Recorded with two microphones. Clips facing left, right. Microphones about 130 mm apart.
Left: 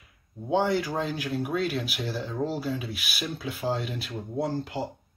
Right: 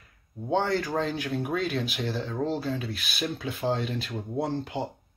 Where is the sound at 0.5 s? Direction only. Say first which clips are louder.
Left 1 dB; 10° left (ahead or behind).